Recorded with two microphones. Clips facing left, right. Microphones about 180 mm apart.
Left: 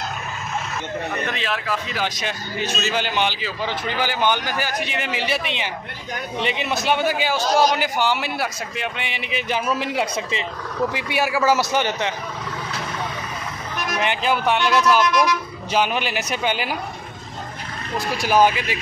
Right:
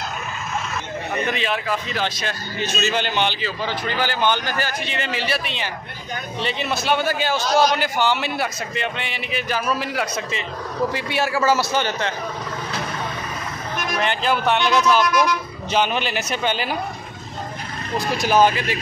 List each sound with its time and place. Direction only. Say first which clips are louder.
1.2 s a man's voice: right 2 dB; centre (ahead or behind)
2.1 s a man's voice: even; 15° left (ahead or behind)
13.9 s a man's voice: even; 10° left (ahead or behind)
18.1 s a man's voice: even; 10° left (ahead or behind)